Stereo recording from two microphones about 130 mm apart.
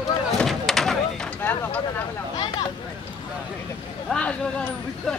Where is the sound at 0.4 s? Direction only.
Centre (ahead or behind).